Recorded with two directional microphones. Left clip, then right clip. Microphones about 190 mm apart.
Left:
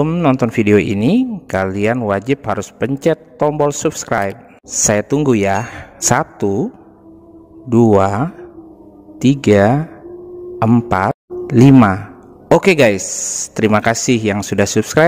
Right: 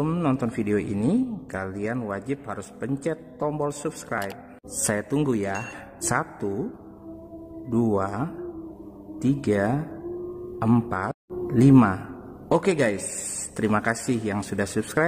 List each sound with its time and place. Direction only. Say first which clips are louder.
0.0 s a man's voice: left 11 dB; 35° left (ahead or behind)
7.7 s speech: left 13 dB; 40° left (ahead or behind)
10.9 s speech: left 13 dB; 40° left (ahead or behind)